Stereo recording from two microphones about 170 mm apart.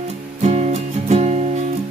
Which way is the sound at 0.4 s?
40° right (ahead or behind).